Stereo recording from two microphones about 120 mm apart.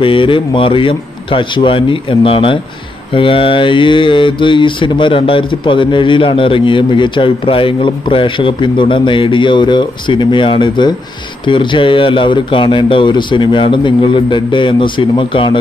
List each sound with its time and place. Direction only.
0.0 s mantra: 45° left (ahead or behind)